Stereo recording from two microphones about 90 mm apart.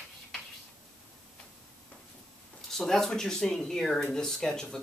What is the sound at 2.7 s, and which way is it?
Speech, 5° left (ahead or behind).